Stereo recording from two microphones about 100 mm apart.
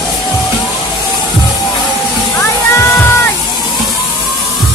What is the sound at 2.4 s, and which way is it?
Music, 25° left (ahead or behind).